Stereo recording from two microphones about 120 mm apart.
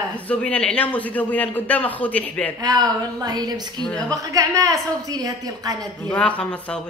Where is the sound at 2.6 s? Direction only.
35° right (ahead or behind).